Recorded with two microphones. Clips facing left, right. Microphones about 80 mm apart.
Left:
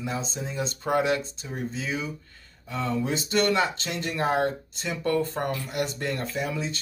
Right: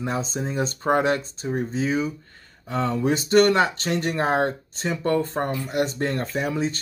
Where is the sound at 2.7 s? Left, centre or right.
Right.